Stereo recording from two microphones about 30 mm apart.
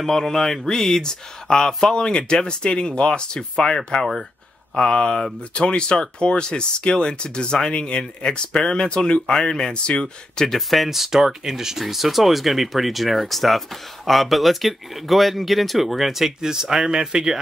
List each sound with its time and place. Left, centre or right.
0.0 s speech: centre; by 8.0 s left
8.0 s speech: left
10.3 s speech: centre
10.9 s speech: centre